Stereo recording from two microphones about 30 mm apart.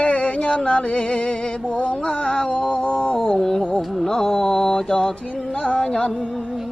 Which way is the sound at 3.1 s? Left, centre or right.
Left.